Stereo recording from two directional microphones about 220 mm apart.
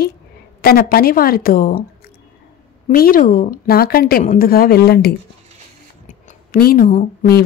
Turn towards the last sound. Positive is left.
turn(degrees=40)  # may be behind; listen again after turning